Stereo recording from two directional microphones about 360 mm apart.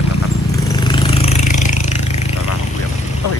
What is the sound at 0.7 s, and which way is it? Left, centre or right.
Jackhammer, centre.